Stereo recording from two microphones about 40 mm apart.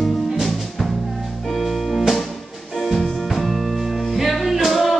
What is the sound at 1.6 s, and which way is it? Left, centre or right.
Music, centre.